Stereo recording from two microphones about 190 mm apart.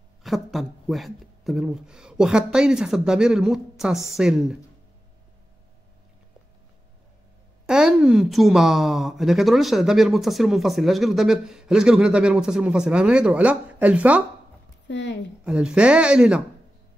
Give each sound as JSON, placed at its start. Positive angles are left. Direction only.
{"t": 0.2, "sound": "a woman's voice", "side_deg": 0}
{"t": 7.6, "sound": "a woman's voice", "side_deg": -5}
{"t": 14.9, "sound": "speech", "side_deg": 65}
{"t": 15.4, "sound": "a woman's voice", "side_deg": -5}